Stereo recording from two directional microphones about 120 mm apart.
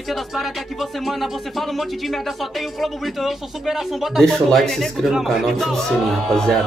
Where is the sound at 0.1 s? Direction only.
Centre (ahead or behind).